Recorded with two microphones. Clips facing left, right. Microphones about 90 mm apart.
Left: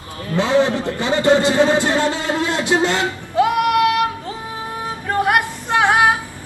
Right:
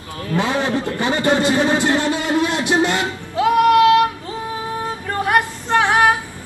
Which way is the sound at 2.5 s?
20° right (ahead or behind).